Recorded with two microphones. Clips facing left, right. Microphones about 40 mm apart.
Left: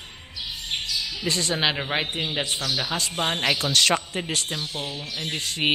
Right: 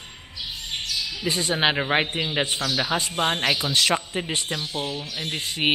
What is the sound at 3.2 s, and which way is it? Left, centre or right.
A man's voice, centre.